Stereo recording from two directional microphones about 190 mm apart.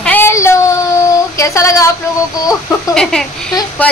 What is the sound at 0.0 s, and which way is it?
Child singing, 10° left (ahead or behind).